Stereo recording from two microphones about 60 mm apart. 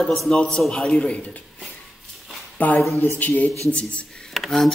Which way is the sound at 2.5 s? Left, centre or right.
Left.